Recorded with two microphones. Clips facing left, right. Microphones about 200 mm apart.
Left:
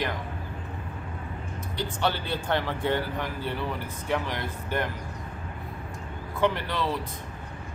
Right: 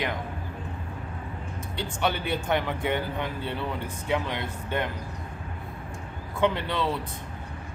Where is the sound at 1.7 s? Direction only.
20° right (ahead or behind).